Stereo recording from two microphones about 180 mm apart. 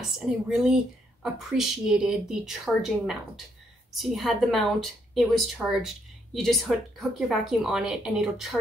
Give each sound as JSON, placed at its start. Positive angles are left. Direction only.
{"t": 0.5, "sound": "a woman's voice", "side_deg": -5}